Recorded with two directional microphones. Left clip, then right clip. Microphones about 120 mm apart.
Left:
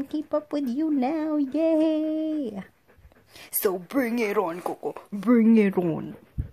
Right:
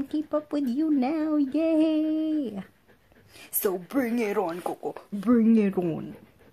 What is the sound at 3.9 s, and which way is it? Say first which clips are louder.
Female singing: left 2 dB; 35° left (ahead or behind).